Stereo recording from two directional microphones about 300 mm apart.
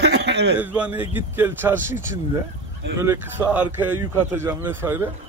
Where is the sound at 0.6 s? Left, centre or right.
Centre.